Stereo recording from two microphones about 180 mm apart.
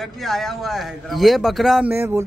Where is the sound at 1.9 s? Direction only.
15° right (ahead or behind).